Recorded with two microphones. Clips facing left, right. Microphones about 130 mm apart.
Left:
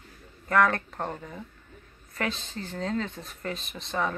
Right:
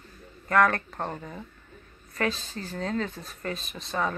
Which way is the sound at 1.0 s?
5° right (ahead or behind).